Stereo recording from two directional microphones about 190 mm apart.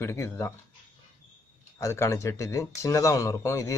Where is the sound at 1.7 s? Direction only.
15° left (ahead or behind).